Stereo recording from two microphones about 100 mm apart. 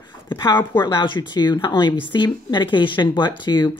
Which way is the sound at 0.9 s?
50° left (ahead or behind).